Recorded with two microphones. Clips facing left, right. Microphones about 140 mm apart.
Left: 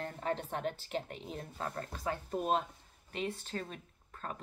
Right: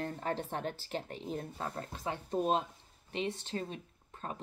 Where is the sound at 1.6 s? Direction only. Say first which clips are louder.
Left 1 dB; 20° right (ahead or behind).